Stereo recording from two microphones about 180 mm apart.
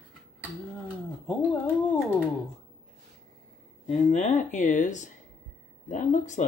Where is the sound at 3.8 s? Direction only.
40° left (ahead or behind).